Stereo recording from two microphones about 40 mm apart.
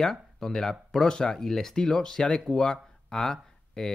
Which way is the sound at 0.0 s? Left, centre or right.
Centre.